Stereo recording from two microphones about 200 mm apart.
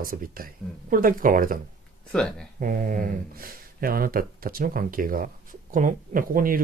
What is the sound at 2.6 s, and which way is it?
Speech, 45° right (ahead or behind).